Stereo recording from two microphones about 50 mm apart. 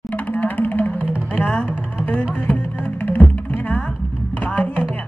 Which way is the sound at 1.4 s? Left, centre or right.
Left.